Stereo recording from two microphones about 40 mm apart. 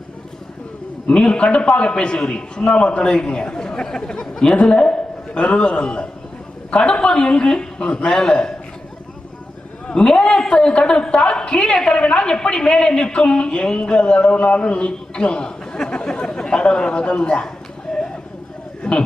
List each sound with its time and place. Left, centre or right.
1.0 s a woman's voice: left
9.8 s a man's voice: left
17.9 s a sound: left